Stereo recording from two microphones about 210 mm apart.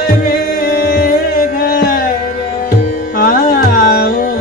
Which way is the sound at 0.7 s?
45° left (ahead or behind).